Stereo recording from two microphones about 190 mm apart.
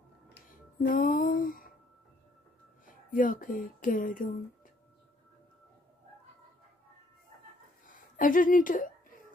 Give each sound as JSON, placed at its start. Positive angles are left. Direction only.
{"t": 0.3, "sound": "music", "side_deg": 50}
{"t": 2.9, "sound": "speech", "side_deg": 45}
{"t": 7.8, "sound": "a sound", "side_deg": 45}